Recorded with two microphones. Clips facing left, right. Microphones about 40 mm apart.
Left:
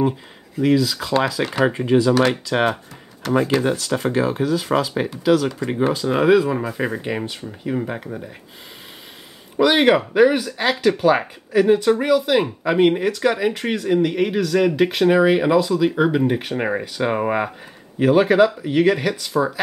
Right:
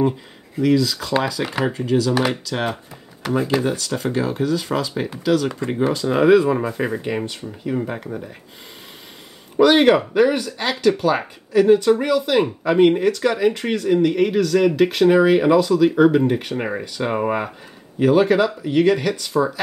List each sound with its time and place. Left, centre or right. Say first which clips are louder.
0.6 s speech: even; centre
1.7 s speech: left 2 dB; left
3.2 s speech: left 2 dB; centre
3.6 s speech: left 2 dB; centre
9.6 s speech: right 2 dB; centre